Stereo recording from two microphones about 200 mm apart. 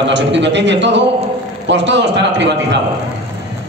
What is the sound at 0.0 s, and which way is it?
A man's voice, 60° right (ahead or behind).